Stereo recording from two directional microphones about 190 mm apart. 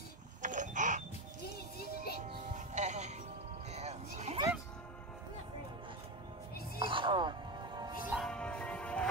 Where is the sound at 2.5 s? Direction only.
40° right (ahead or behind).